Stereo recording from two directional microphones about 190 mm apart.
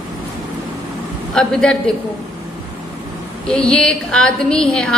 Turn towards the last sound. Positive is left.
turn(degrees=5)  # may be behind; listen again after turning